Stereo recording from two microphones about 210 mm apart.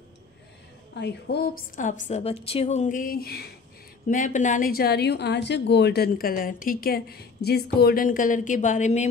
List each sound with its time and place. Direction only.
0.9 s a woman's voice: 50° left (ahead or behind)
4.1 s a woman's voice: 35° left (ahead or behind)